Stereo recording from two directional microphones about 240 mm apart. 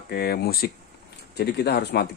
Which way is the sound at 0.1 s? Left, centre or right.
Left.